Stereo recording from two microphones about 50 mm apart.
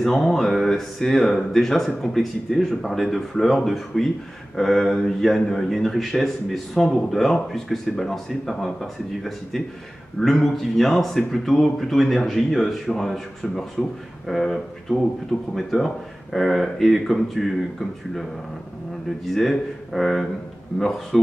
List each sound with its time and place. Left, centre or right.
0.0 s a man's voice: centre
19.2 s a man's voice: centre